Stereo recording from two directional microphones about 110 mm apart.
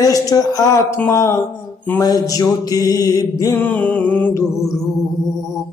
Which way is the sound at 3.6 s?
15° left (ahead or behind).